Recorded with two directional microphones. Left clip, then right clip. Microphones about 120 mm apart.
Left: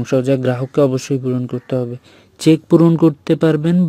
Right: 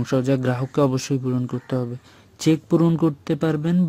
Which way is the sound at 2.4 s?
50° left (ahead or behind).